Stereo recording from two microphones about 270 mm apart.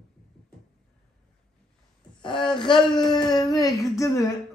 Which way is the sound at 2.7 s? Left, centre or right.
Centre.